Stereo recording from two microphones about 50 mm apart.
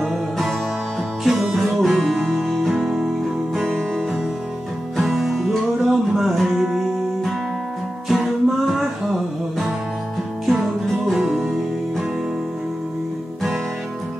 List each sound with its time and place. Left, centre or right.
0.0 s music: centre
1.8 s guitar: centre
2.8 s music: centre
4.9 s music: centre
5.9 s a sound: centre
6.5 s music: centre
8.1 s music: centre